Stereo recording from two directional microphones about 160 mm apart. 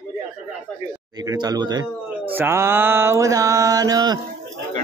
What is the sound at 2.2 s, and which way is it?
Mantra, 10° right (ahead or behind).